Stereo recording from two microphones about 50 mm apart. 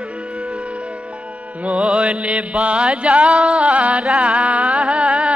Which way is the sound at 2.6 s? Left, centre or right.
Centre.